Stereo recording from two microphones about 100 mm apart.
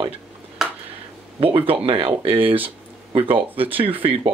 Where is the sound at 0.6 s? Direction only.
5° right (ahead or behind).